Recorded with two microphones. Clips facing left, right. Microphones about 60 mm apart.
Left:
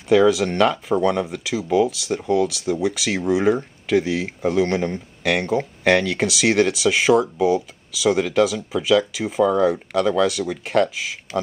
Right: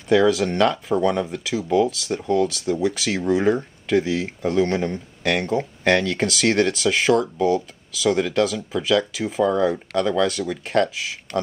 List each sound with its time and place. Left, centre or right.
0.1 s speech: centre
11.3 s speech: centre